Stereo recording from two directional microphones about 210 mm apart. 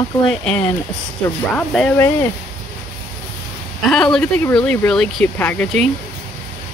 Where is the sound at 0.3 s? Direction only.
5° left (ahead or behind).